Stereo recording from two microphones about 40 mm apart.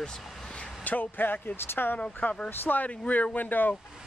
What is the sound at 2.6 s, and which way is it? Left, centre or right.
Speech, left.